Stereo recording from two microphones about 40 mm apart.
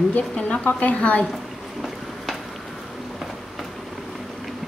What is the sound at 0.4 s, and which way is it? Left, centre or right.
Speech, left.